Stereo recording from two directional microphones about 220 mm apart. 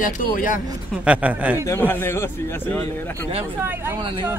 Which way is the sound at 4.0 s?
20° right (ahead or behind).